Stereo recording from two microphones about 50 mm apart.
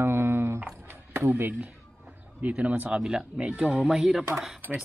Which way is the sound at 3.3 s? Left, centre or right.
Right.